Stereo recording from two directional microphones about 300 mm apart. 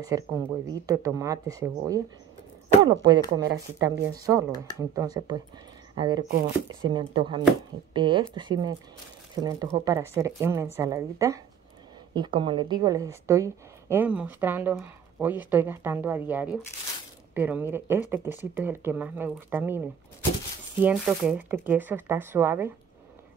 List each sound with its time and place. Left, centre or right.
0.0 s a woman's voice: centre
6.2 s speech: right
6.7 s a woman's voice: centre
20.8 s a woman's voice: centre